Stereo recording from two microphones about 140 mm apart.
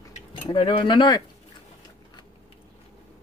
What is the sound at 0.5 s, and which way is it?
Speech, 40° left (ahead or behind).